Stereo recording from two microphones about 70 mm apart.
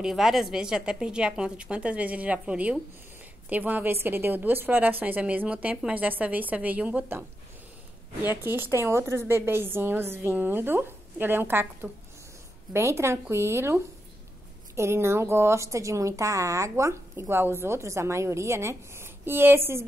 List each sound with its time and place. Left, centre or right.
0.0 s a woman's voice: centre; by 7.1 s right
8.5 s a woman's voice: right
14.8 s a woman's voice: right